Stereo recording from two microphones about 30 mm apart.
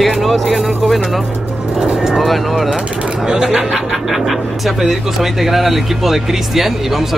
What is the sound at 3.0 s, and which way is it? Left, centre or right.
Speech, right.